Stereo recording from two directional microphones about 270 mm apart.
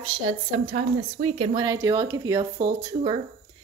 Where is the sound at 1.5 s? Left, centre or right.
Centre.